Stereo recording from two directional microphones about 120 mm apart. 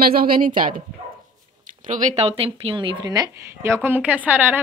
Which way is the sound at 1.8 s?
90° right.